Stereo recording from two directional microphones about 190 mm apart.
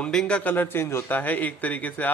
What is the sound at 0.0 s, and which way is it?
A man's voice, 5° left (ahead or behind).